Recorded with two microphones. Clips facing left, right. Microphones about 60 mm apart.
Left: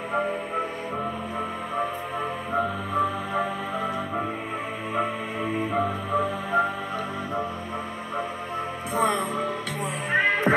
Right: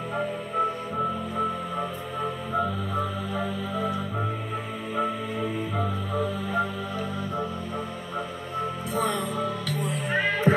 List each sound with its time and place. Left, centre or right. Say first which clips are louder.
4.9 s music: even; left
8.9 s music: left 4 dB; left
10.1 s music: left 2 dB; left